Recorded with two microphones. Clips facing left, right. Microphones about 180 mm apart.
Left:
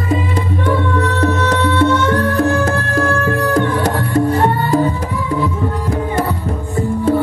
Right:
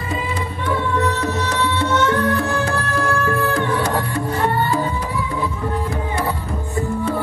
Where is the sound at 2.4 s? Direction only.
45° left (ahead or behind).